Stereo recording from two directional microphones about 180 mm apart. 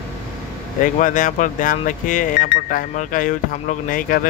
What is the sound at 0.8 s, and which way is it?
Speech, 45° left (ahead or behind).